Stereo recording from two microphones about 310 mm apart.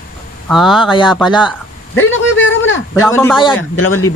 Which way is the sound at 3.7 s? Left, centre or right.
Left.